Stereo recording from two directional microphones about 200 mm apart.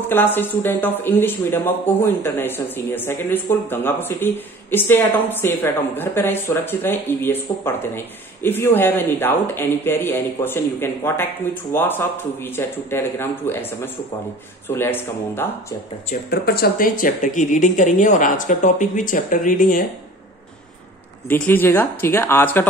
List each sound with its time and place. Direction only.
0.1 s speech: 10° left (ahead or behind)
16.1 s speech: 50° left (ahead or behind)
21.3 s speech: 10° left (ahead or behind)